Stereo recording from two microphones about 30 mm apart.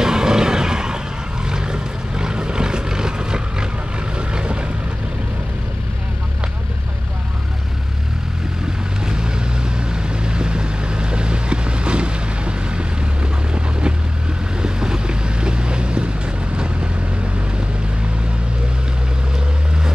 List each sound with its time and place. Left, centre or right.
0.0 s vehicle: right
9.0 s vehicle: right
14.6 s boat: right